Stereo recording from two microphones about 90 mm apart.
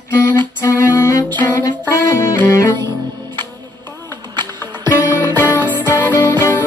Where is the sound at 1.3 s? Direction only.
20° left (ahead or behind).